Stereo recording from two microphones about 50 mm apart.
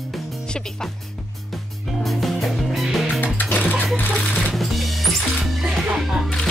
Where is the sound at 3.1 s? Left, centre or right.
Left.